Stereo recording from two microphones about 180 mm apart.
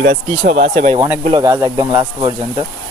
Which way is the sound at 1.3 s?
20° right (ahead or behind).